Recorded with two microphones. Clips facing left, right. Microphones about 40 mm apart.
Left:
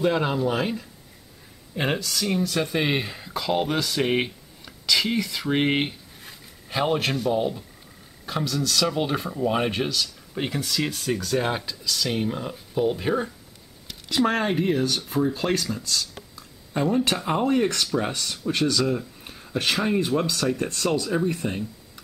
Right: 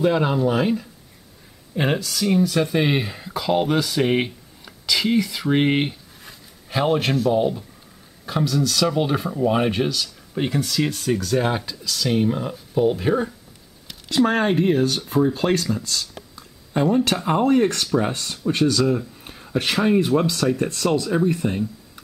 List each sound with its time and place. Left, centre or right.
0.0 s speech: centre
14.3 s speech: centre